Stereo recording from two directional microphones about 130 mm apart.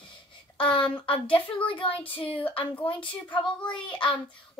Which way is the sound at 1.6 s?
45° left (ahead or behind).